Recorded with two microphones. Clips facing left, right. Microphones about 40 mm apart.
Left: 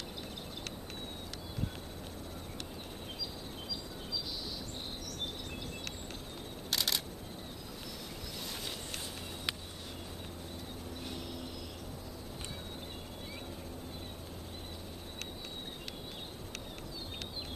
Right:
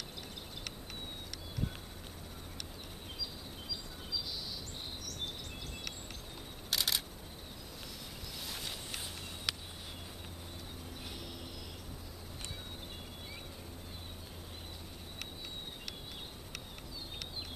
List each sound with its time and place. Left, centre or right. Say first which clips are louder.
6.7 s camera: even; centre